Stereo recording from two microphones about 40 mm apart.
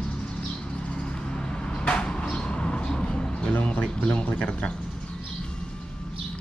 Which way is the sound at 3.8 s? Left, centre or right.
Left.